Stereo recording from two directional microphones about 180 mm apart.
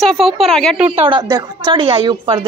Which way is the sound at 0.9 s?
30° right (ahead or behind).